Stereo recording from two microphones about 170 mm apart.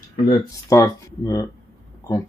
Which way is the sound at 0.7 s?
20° left (ahead or behind).